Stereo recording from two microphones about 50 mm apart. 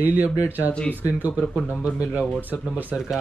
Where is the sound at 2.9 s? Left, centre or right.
Left.